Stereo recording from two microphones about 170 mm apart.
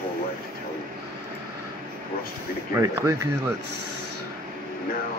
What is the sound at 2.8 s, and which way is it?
Speech, 15° right (ahead or behind).